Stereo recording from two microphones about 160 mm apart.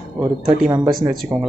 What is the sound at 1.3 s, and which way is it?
Speech, 10° right (ahead or behind).